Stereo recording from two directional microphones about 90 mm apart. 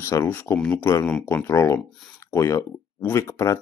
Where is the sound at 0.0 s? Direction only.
25° left (ahead or behind).